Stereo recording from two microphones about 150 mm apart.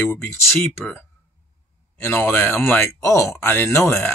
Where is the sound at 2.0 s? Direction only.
15° left (ahead or behind).